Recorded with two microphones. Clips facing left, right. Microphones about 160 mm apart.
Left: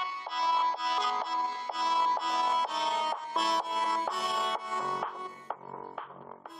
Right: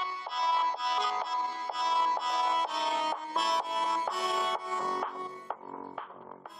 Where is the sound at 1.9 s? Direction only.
Centre (ahead or behind).